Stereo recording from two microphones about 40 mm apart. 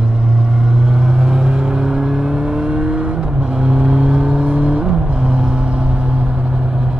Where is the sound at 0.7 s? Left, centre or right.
Centre.